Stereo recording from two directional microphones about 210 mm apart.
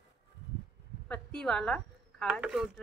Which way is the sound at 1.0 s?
5° left (ahead or behind).